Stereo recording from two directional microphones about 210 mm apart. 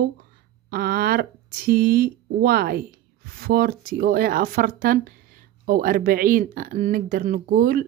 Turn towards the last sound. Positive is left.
turn(degrees=-40)  # may be behind; listen again after turning